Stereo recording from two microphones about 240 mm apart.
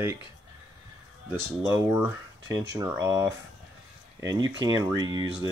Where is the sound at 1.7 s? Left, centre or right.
Centre.